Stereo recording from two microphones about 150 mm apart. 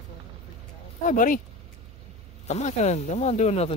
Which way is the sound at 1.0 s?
60° left (ahead or behind).